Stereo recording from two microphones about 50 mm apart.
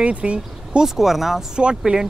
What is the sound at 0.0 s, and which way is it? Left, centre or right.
Speech, right.